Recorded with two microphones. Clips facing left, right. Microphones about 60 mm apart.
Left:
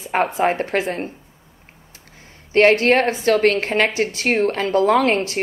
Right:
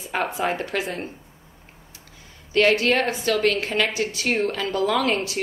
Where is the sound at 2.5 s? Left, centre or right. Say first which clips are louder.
Left 5 dB; left.